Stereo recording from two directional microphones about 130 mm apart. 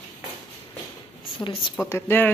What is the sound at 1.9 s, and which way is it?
Speech, 20° left (ahead or behind).